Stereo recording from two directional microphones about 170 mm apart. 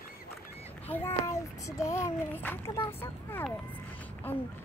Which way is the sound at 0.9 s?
15° left (ahead or behind).